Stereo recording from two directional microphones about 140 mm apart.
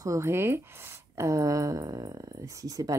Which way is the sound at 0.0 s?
20° right (ahead or behind).